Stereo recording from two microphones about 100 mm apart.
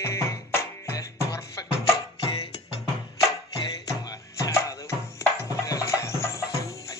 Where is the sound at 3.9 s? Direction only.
35° left (ahead or behind).